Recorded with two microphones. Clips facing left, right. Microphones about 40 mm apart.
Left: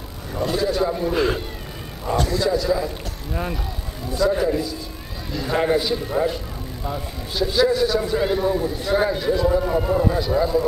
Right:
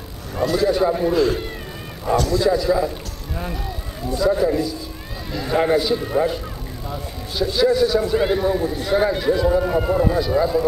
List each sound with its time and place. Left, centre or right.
0.6 s a man's voice: centre
1.1 s speech: left
2.3 s a man's voice: centre
4.1 s speech: centre
8.2 s a man's voice: centre